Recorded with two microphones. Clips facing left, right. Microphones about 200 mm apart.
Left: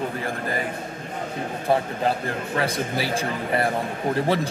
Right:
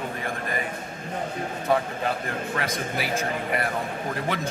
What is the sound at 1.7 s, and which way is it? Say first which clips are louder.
A man's voice: left 3 dB; 30° left (ahead or behind).